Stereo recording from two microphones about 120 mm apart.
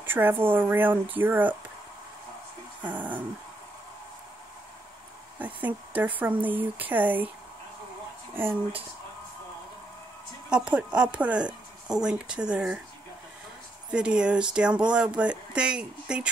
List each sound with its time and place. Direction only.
0.0 s speech: 15° right (ahead or behind)
2.8 s speech: 15° right (ahead or behind)
5.4 s speech: 15° right (ahead or behind)
10.5 s speech: 10° right (ahead or behind)
13.8 s speech: 10° right (ahead or behind)